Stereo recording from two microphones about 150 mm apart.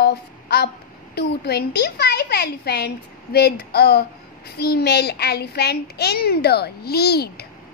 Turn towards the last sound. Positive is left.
turn(degrees=90)